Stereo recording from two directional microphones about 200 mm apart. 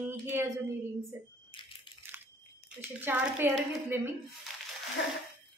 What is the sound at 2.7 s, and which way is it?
Speech, 10° right (ahead or behind).